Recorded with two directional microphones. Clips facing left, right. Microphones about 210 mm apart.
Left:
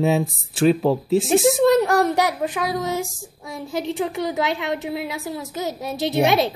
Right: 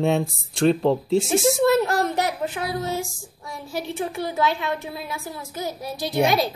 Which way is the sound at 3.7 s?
20° left (ahead or behind).